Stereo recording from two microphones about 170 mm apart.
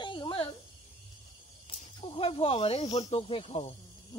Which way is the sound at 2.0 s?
35° left (ahead or behind).